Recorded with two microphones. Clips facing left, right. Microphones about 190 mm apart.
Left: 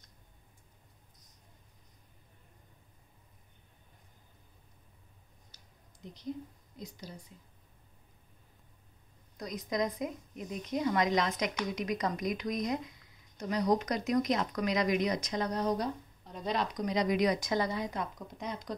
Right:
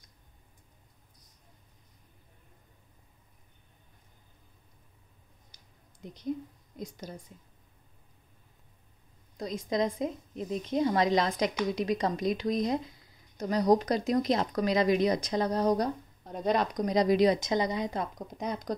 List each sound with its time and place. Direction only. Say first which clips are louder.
5.5 s a sound: even; 15° right (ahead or behind)
6.0 s a sound: right 3 dB; 55° right (ahead or behind)
6.8 s a woman's voice: right 5 dB; 50° right (ahead or behind)
9.4 s speech: right 4 dB; 25° right (ahead or behind)
16.3 s speech: right 6 dB; 50° right (ahead or behind); by 17.9 s 20° right (ahead or behind)
17.9 s speech: right 4 dB; 40° right (ahead or behind)